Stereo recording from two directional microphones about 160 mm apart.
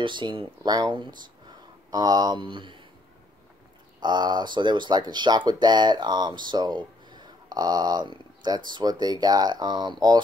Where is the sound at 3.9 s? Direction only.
25° right (ahead or behind).